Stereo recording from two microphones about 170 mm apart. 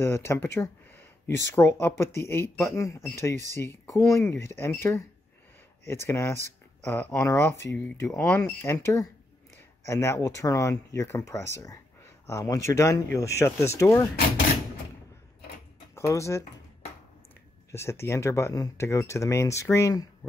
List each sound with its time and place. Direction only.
0.0 s speech: 15° left (ahead or behind)
15.9 s speech: 15° left (ahead or behind)
17.6 s speech: 15° left (ahead or behind)